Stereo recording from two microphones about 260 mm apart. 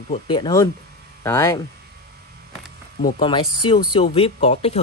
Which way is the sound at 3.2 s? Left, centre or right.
Centre.